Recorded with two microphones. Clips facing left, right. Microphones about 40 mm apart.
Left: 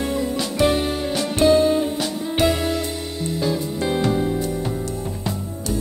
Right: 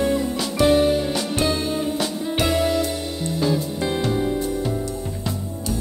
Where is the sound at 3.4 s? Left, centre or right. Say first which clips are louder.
Even; centre.